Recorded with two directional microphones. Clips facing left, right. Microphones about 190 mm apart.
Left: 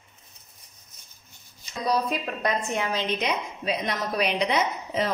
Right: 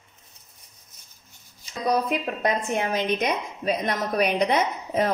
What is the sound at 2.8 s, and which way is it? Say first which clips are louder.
A woman's voice: right 3 dB; 50° right (ahead or behind).